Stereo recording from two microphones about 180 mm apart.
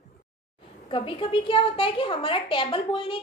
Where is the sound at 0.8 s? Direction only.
30° left (ahead or behind).